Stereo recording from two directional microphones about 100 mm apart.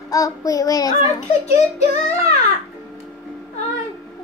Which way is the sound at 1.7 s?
90° left.